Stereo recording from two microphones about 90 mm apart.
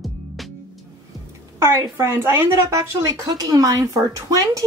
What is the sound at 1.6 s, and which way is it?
A woman's voice, 30° right (ahead or behind).